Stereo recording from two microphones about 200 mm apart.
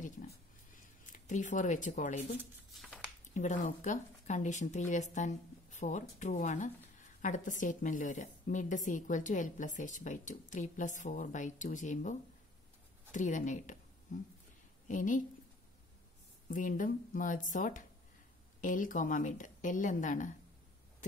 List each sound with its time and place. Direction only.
0.0 s speech: 40° left (ahead or behind)
3.3 s a woman's voice: 35° left (ahead or behind)
16.4 s a woman's voice: 40° left (ahead or behind)